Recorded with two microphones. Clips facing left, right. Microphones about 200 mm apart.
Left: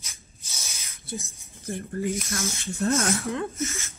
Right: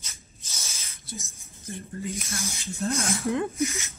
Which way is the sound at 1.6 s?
70° left (ahead or behind).